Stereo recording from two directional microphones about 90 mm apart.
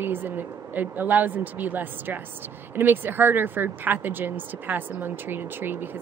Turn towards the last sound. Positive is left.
turn(degrees=-25)  # may be behind; listen again after turning